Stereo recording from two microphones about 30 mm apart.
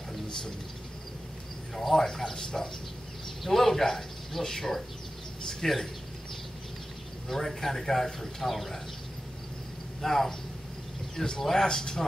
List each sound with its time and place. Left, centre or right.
1.8 s speech: centre
7.2 s speech: centre
10.0 s speech: centre
11.2 s speech: centre